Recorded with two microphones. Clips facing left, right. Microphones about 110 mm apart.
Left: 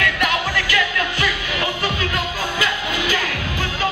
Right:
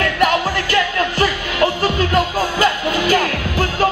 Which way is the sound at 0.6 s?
35° right (ahead or behind).